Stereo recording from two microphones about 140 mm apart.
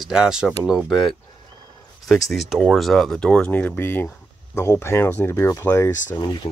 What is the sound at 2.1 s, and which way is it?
Speech, centre (ahead or behind).